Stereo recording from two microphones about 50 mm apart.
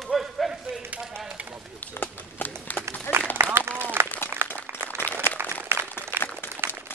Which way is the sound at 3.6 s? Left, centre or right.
Right.